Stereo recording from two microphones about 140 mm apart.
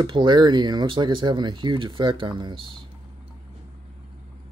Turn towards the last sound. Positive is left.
turn(degrees=-30)  # may be behind; listen again after turning